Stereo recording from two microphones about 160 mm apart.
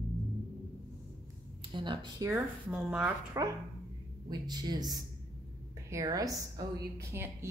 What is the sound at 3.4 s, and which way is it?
A woman's voice, 20° right (ahead or behind).